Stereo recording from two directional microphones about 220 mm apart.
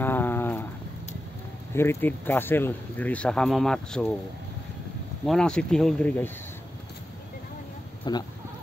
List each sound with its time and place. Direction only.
0.0 s a sound: 10° left (ahead or behind)
1.7 s speech: 10° left (ahead or behind)
5.2 s speech: centre (ahead or behind)
8.1 s speech: 20° left (ahead or behind)